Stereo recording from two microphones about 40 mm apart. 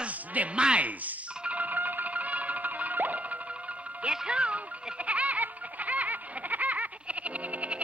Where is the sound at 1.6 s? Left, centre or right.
Right.